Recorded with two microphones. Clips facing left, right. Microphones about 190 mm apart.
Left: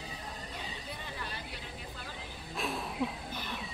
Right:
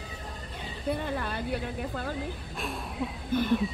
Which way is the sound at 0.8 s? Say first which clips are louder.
Right 12 dB; 55° right (ahead or behind).